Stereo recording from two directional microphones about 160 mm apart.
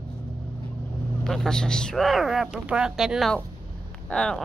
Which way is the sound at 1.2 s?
5° left (ahead or behind).